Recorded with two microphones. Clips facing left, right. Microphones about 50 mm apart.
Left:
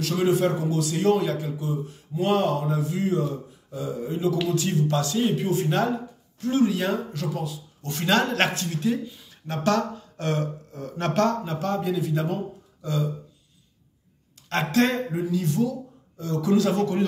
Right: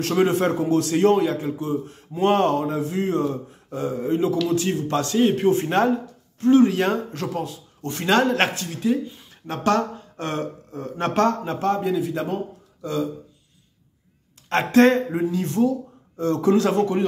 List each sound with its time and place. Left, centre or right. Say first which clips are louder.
0.0 s speech: right 2 dB; right
0.9 s a man's voice: right 3 dB; right
1.6 s a man's voice: right 4 dB; right
7.9 s speech: right 3 dB; centre
9.3 s speech: right 2 dB; right
12.0 s speech: right 1 dB; centre
14.5 s a man's voice: right 6 dB; right